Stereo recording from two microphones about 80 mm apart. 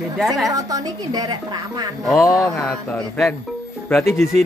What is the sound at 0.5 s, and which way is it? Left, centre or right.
A woman's voice, right.